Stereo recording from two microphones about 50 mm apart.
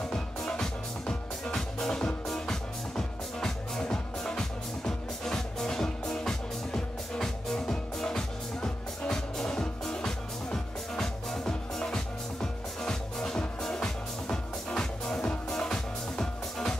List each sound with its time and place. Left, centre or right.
0.1 s music: centre